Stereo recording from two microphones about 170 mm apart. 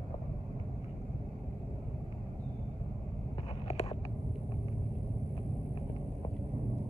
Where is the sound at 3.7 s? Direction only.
40° left (ahead or behind).